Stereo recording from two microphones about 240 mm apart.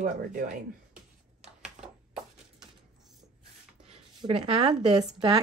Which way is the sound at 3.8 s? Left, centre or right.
Right.